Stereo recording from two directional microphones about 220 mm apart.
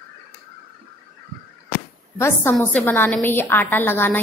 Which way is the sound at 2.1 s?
10° left (ahead or behind).